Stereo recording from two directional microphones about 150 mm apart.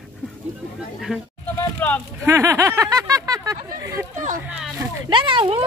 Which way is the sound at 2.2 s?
20° right (ahead or behind).